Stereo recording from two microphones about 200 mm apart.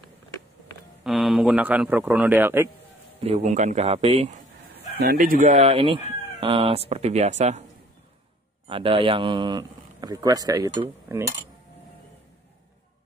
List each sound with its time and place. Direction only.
1.0 s a man's voice: centre (ahead or behind)
3.3 s speech: 35° right (ahead or behind)
5.0 s speech: 45° right (ahead or behind)
8.6 s a man's voice: 25° right (ahead or behind)